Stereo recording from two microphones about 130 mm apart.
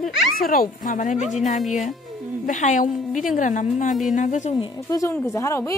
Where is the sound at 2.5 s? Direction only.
75° left (ahead or behind).